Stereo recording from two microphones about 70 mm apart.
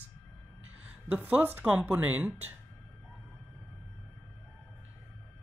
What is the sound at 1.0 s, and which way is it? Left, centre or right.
Speech, right.